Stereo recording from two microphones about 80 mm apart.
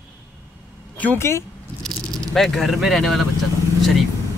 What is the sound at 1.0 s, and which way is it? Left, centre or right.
Speech, left.